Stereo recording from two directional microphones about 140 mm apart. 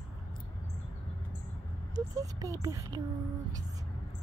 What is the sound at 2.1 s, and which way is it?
Speech, 25° right (ahead or behind).